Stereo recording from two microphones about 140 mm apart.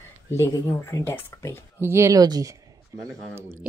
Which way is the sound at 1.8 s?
20° right (ahead or behind).